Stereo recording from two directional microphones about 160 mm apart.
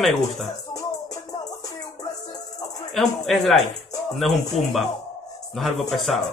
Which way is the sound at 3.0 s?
Centre (ahead or behind).